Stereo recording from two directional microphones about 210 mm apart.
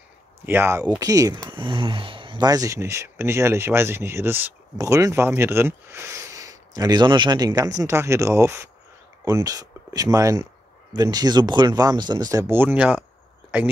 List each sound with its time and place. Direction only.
0.5 s speech: 10° right (ahead or behind)